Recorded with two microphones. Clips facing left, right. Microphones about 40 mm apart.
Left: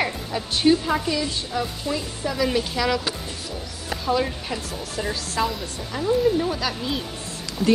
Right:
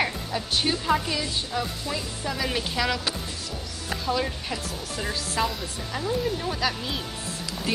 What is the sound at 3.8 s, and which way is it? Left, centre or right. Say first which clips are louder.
Speech: left 4 dB; centre.